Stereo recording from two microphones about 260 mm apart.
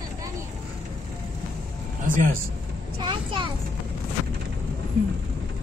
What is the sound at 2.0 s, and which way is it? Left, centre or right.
Speech, right.